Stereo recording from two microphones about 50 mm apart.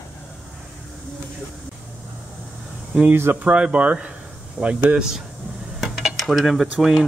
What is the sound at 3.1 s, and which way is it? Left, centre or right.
Speech, right.